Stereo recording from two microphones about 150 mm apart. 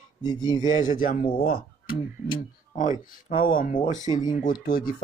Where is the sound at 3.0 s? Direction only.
60° left (ahead or behind).